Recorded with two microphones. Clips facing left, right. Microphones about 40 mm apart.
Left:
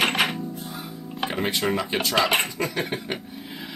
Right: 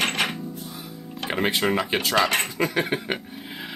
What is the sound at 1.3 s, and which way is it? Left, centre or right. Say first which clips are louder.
Speech: right 3 dB; centre.